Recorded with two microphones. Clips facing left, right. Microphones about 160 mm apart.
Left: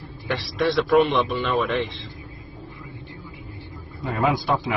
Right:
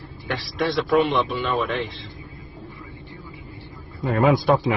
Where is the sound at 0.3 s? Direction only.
Centre (ahead or behind).